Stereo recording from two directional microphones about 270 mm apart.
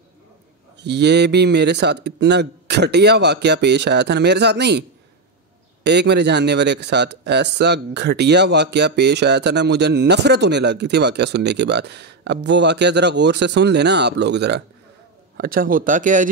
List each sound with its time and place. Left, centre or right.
0.7 s speech: right
5.9 s speech: right